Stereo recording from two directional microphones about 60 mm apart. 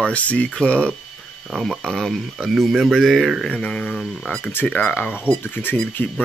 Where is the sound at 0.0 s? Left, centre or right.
Left.